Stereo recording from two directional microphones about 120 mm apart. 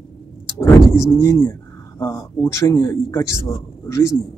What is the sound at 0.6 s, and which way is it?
Speech, 25° left (ahead or behind).